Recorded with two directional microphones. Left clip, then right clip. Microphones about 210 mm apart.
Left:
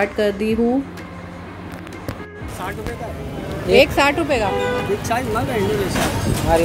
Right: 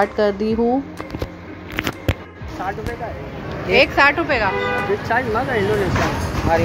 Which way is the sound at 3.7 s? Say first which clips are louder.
Even; 30° left (ahead or behind).